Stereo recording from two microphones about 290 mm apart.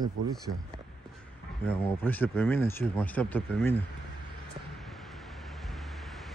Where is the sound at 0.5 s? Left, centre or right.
Right.